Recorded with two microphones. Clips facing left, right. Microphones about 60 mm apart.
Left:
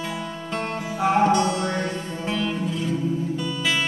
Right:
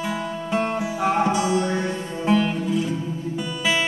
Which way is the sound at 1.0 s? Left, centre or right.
Centre.